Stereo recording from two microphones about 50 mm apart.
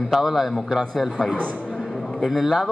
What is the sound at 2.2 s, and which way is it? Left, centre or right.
Speech, centre.